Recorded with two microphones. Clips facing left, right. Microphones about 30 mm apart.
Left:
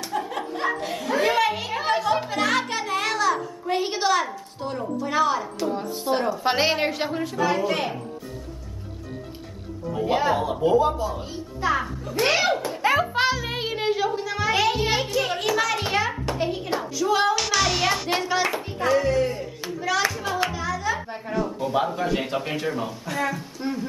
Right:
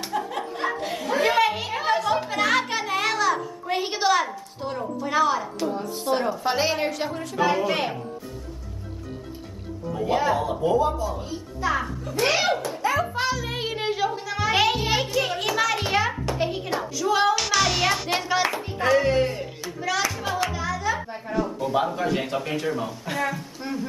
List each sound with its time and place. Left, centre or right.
0.3 s a sound: centre
5.8 s speech: centre
6.4 s a woman's voice: left
7.5 s speech: centre
10.0 s a woman's voice: centre
13.1 s child singing: left; by 14.5 s centre
14.5 s a child's voice: centre
14.8 s speech: centre
18.8 s speech: centre
19.0 s speech: right
19.7 s a woman's voice: centre